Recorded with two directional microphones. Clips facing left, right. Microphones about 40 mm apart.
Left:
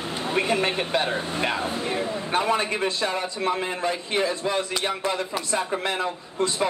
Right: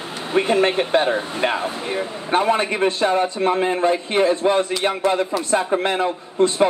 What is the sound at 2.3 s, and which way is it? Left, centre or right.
A man's voice, right.